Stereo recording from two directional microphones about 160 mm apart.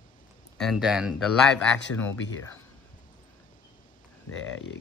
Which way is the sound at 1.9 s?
10° left (ahead or behind).